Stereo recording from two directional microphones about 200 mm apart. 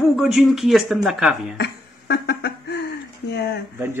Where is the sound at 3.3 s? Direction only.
55° left (ahead or behind).